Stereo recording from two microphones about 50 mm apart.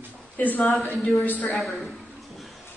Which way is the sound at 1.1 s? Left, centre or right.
Left.